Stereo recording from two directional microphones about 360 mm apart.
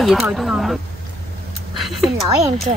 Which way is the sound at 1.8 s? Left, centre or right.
Centre.